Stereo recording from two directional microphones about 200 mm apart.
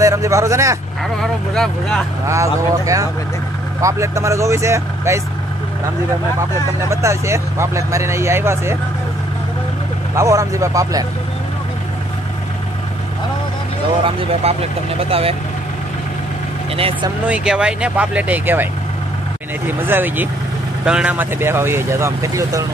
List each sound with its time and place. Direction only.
0.0 s speech: 15° right (ahead or behind)
1.2 s speech: centre (ahead or behind)
2.2 s speech: 15° right (ahead or behind)
6.9 s speech: 15° right (ahead or behind)
10.1 s speech: 15° right (ahead or behind)
14.0 s speech: 30° right (ahead or behind)
16.7 s speech: 30° right (ahead or behind)
17.3 s speech: 5° right (ahead or behind)
19.9 s speech: 10° right (ahead or behind)